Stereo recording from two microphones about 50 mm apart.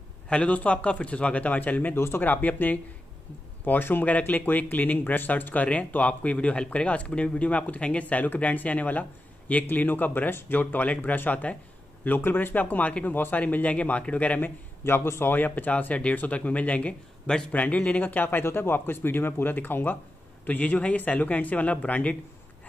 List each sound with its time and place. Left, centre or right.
0.3 s speech: left
2.0 s speech: left
2.2 s speech: left
12.0 s speech: left
14.9 s speech: left